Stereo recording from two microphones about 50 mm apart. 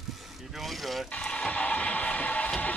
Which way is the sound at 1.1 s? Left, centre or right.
Left.